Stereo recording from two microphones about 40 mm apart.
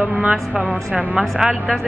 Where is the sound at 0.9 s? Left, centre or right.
Centre.